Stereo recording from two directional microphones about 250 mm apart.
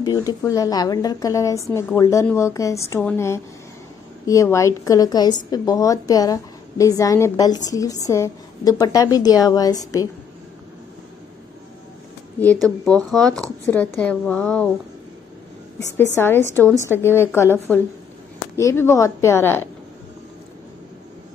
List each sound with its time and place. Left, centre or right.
0.0 s a woman's voice: centre
12.6 s speech: centre
16.2 s a woman's voice: centre